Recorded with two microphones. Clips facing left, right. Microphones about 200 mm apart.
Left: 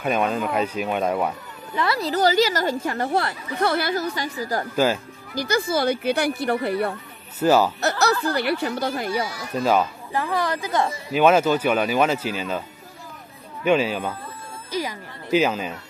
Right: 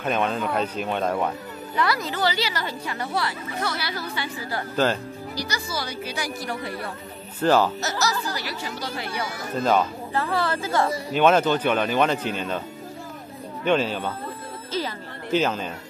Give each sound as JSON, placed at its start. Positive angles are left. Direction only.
{"t": 0.0, "sound": "speech", "side_deg": 5}
{"t": 1.8, "sound": "a woman's voice", "side_deg": 25}
{"t": 2.0, "sound": "speech", "side_deg": 45}
{"t": 7.3, "sound": "speech", "side_deg": 10}
{"t": 7.8, "sound": "speech", "side_deg": 60}
{"t": 9.6, "sound": "speech", "side_deg": 10}
{"t": 11.1, "sound": "speech", "side_deg": 5}
{"t": 13.7, "sound": "speech", "side_deg": 10}
{"t": 14.7, "sound": "music", "side_deg": 10}